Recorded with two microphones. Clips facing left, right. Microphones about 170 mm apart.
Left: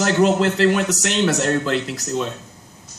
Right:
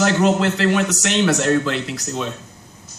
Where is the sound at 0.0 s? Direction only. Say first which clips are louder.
Even; 40° left (ahead or behind).